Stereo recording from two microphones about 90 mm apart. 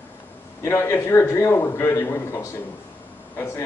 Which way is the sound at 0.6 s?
30° left (ahead or behind).